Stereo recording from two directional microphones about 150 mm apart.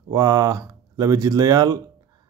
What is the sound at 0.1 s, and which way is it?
A man's voice, 25° right (ahead or behind).